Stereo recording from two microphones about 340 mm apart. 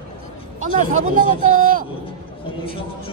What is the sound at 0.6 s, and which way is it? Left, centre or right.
Speech, right.